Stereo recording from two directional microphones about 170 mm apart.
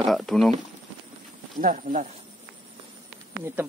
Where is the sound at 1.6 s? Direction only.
50° right (ahead or behind).